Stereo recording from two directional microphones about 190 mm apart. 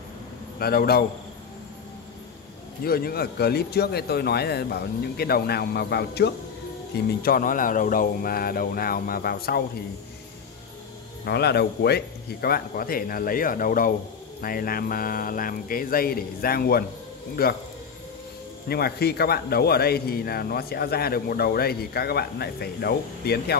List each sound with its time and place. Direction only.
0.6 s speech: 55° left (ahead or behind)
2.8 s a man's voice: 55° left (ahead or behind)
7.2 s speech: 50° left (ahead or behind)
11.2 s speech: 60° left (ahead or behind)
18.7 s a man's voice: 55° left (ahead or behind)